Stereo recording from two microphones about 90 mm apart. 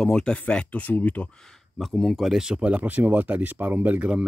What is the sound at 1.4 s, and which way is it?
Speech, centre (ahead or behind).